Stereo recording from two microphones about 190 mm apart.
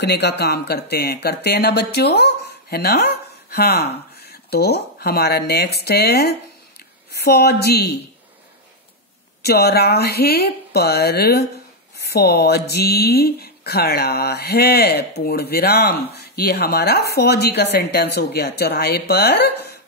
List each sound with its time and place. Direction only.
0.0 s speech: 60° left (ahead or behind)
9.4 s speech: 55° left (ahead or behind)